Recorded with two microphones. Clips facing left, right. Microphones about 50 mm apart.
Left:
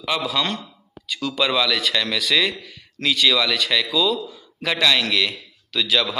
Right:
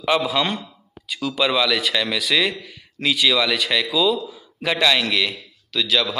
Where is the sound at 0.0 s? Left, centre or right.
Centre.